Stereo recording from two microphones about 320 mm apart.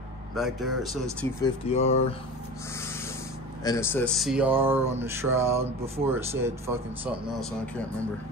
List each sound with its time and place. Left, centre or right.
0.4 s speech: centre
1.4 s speech: centre
3.6 s speech: centre